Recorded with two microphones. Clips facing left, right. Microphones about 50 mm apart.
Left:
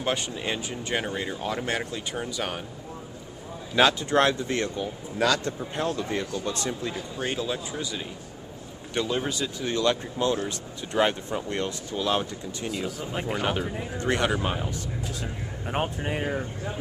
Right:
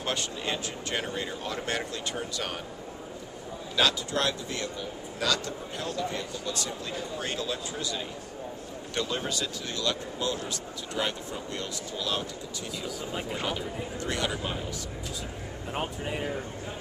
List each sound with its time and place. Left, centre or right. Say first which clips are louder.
0.0 s speech: left 3 dB; centre
3.7 s speech: left 6 dB; left
6.9 s speech: left 2 dB; centre; by 14.7 s left
15.7 s speech: left 4 dB; left